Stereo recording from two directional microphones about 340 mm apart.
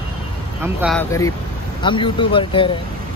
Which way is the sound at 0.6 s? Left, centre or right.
Centre.